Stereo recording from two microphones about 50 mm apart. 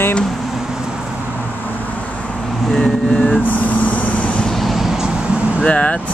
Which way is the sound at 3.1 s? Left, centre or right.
Left.